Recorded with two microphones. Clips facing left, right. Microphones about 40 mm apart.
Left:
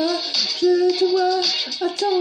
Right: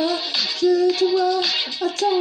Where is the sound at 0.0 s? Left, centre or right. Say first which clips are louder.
Even; right.